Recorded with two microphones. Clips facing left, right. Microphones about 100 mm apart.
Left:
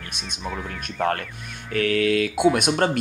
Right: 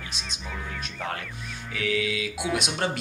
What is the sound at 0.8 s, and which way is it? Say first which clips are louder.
Speech: left 12 dB; 55° left (ahead or behind).